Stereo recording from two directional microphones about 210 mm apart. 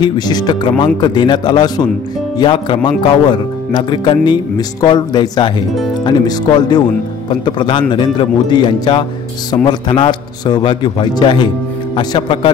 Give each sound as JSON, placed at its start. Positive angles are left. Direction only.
{"t": 0.0, "sound": "speech", "side_deg": 20}